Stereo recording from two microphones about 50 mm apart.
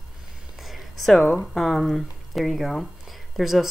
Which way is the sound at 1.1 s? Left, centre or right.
Left.